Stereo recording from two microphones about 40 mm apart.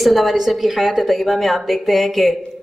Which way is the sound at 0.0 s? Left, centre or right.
Centre.